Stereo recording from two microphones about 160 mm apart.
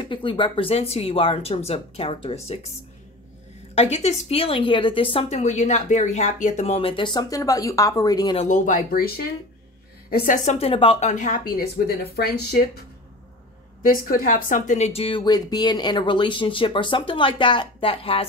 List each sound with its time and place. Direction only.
0.0 s speech: 30° left (ahead or behind)
3.7 s speech: 40° left (ahead or behind)
5.4 s speech: 45° left (ahead or behind); by 8.4 s 25° left (ahead or behind)
8.4 s speech: 55° left (ahead or behind); by 12.8 s 75° left (ahead or behind)
13.8 s speech: 60° left (ahead or behind); by 18.2 s 35° left (ahead or behind)